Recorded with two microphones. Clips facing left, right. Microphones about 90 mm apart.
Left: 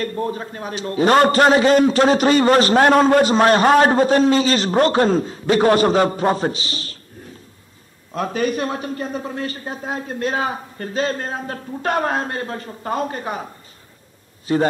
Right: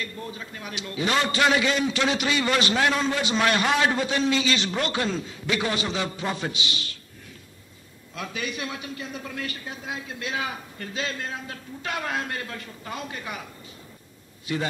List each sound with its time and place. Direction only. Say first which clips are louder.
0.0 s a man's voice: left 11 dB; 45° left (ahead or behind)
8.1 s a man's voice: left 12 dB; 45° left (ahead or behind)
14.5 s a man's voice: left 10 dB; 35° left (ahead or behind)